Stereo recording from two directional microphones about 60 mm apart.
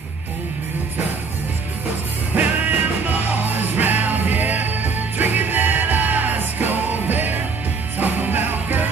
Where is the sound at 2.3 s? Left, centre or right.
Right.